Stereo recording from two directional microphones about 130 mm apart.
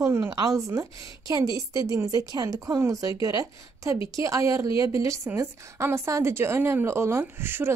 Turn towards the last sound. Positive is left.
turn(degrees=-15)  # may be behind; listen again after turning